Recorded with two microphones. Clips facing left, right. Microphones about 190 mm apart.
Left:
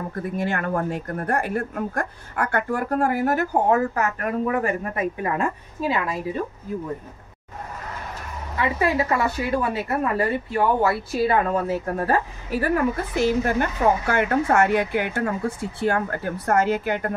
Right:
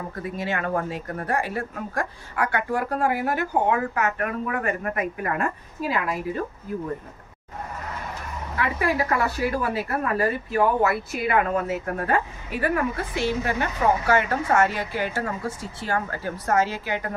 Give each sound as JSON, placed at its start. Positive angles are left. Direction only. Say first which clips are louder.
{"t": 0.2, "sound": "speech", "louder": "left 2 dB", "side_deg": 50}
{"t": 8.5, "sound": "a woman's voice", "louder": "left 2 dB", "side_deg": 25}